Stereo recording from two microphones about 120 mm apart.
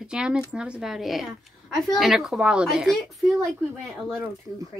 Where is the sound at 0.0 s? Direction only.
5° right (ahead or behind).